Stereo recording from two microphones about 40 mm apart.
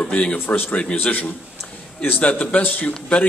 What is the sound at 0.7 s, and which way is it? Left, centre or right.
A man's voice, left.